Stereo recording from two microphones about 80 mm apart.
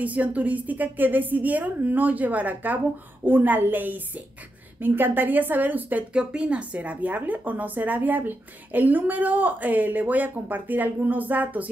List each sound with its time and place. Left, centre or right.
0.0 s speech: centre